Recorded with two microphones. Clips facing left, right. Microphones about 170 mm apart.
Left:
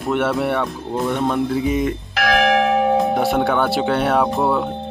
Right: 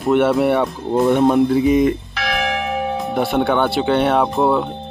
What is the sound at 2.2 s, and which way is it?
Church bell, 70° left (ahead or behind).